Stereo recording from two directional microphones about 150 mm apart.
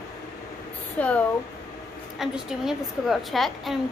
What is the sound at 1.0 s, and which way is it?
Speech, 10° left (ahead or behind).